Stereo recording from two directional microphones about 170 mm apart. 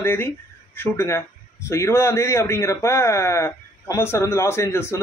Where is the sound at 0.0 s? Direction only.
15° left (ahead or behind).